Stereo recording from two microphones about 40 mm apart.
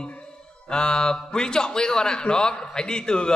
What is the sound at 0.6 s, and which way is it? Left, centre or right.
A man's voice, centre.